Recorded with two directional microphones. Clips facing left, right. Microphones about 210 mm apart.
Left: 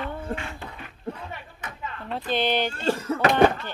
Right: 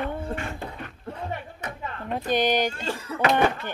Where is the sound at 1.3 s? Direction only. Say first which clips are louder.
Right 5 dB; 45° right (ahead or behind).